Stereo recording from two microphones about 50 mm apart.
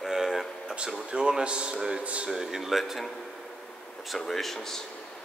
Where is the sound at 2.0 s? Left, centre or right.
Right.